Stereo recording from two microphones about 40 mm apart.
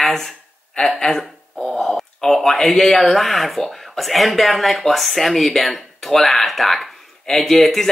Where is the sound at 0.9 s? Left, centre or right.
Centre.